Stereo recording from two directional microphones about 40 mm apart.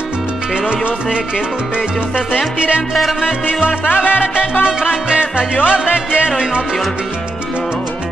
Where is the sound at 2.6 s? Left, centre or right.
Right.